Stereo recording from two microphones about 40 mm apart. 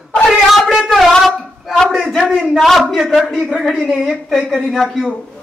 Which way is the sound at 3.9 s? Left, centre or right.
Centre.